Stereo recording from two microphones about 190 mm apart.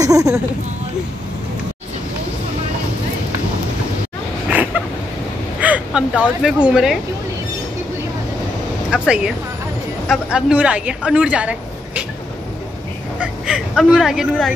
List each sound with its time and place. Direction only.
0.0 s speech: 15° right (ahead or behind)
4.5 s a sound: 5° right (ahead or behind)
5.6 s speech: 5° right (ahead or behind)
8.9 s a woman's voice: 5° right (ahead or behind)
13.2 s speech: 5° right (ahead or behind)